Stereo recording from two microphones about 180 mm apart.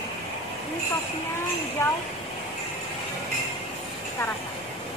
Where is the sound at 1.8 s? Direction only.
20° left (ahead or behind).